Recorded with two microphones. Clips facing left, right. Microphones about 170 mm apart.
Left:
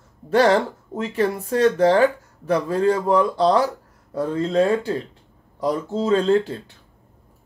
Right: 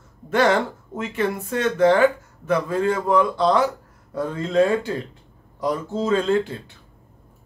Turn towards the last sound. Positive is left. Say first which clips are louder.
# left 2 dB
turn(degrees=35)  # may be behind; listen again after turning